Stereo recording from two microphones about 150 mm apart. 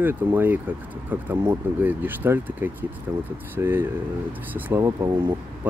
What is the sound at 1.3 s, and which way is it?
Speech, 25° right (ahead or behind).